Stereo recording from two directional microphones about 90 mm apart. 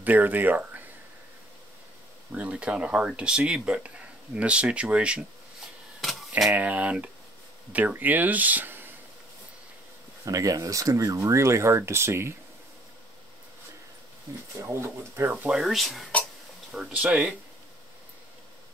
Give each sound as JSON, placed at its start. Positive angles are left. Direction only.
{"t": 0.0, "sound": "speech", "side_deg": -20}
{"t": 2.3, "sound": "speech", "side_deg": -15}
{"t": 5.9, "sound": "a sound", "side_deg": 0}
{"t": 6.5, "sound": "speech", "side_deg": -15}
{"t": 10.2, "sound": "speech", "side_deg": -40}
{"t": 14.6, "sound": "speech", "side_deg": -35}
{"t": 15.2, "sound": "speech", "side_deg": -20}
{"t": 15.5, "sound": "speech", "side_deg": 0}
{"t": 16.9, "sound": "speech", "side_deg": -15}